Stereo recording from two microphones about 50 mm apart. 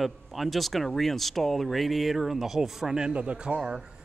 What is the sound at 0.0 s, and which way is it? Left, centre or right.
Speech, centre.